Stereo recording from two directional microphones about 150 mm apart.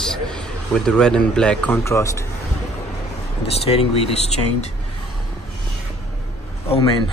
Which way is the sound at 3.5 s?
45° left (ahead or behind).